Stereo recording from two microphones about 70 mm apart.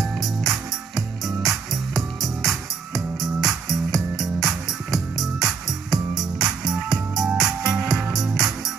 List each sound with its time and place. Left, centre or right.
0.0 s music: centre